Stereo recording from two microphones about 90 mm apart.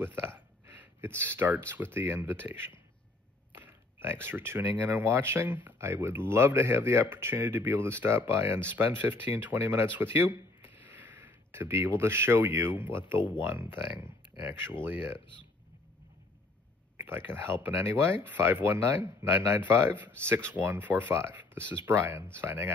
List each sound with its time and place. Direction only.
0.0 s speech: 25° right (ahead or behind)
16.9 s speech: 25° right (ahead or behind)